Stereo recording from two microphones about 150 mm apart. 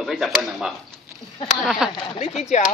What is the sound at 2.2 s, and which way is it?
Speech, 45° left (ahead or behind).